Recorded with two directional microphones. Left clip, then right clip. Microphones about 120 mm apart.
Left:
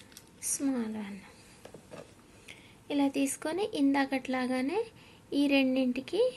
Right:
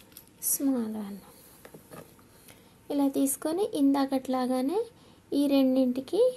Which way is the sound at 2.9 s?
55° right (ahead or behind).